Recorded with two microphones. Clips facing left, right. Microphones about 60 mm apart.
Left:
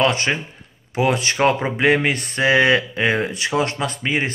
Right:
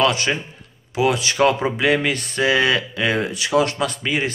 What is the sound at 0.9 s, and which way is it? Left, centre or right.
Speech, left.